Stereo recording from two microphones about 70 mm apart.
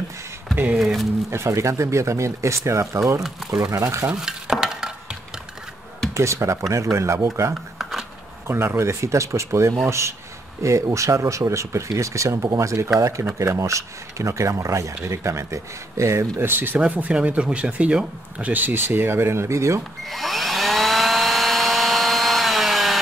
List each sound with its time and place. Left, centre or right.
0.7 s speech: centre
1.3 s speech: right
3.2 s speech: centre
3.4 s speech: right
4.1 s stir: centre
6.1 s speech: right
16.8 s speech: centre; by 19.8 s right
20.1 s a sound: centre